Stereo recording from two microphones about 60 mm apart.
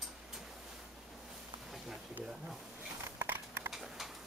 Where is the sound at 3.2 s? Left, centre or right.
Right.